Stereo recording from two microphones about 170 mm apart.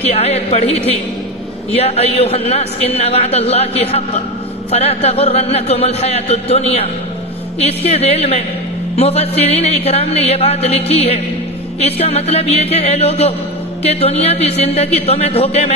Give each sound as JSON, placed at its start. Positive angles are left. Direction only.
{"t": 0.0, "sound": "a man's voice", "side_deg": 40}